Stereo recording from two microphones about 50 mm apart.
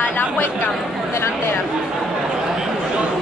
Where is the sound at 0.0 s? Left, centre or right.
Left.